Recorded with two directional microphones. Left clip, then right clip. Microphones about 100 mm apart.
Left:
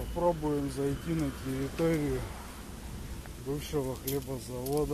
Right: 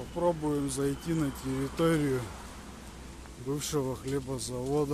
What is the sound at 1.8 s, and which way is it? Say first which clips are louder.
Speech: right 2 dB; 60° right (ahead or behind).